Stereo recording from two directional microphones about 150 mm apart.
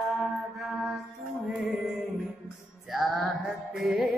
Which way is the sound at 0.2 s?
Centre (ahead or behind).